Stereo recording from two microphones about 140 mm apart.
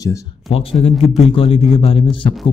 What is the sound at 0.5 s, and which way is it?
Speech, 45° left (ahead or behind).